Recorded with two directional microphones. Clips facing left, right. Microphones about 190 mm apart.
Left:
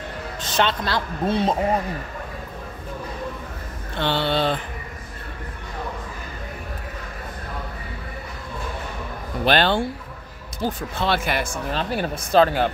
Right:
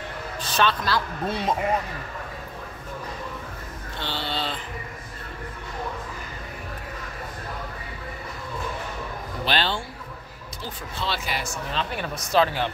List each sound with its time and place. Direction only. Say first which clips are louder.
0.6 s speech: left 1 dB; 25° left (ahead or behind)
4.0 s speech: left 9 dB; 60° left (ahead or behind)
9.4 s speech: left 7 dB; 55° left (ahead or behind)